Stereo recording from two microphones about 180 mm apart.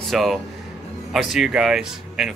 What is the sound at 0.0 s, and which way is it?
Speech, centre (ahead or behind).